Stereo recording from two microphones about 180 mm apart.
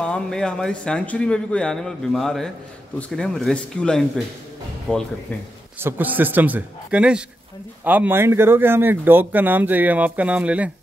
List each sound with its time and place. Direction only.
0.0 s a man's voice: 5° left (ahead or behind)
5.8 s speech: 10° right (ahead or behind)